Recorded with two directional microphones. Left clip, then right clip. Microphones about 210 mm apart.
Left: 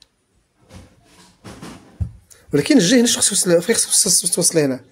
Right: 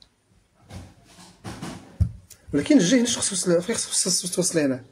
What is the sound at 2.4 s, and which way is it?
Speech, 45° left (ahead or behind).